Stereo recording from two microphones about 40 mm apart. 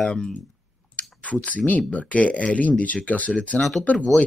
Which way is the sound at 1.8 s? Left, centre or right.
Left.